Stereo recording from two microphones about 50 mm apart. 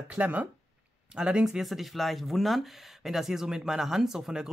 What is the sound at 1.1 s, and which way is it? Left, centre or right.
Speech, centre.